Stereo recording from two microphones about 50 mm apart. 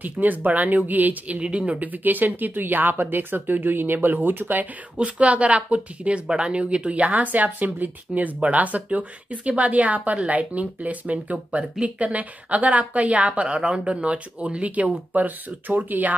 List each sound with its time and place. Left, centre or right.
0.0 s speech: right
4.9 s speech: right